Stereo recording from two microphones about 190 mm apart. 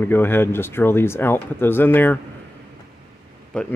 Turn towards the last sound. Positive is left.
turn(degrees=5)  # may be behind; listen again after turning